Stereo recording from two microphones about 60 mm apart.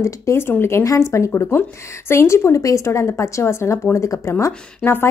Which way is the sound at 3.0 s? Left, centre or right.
Left.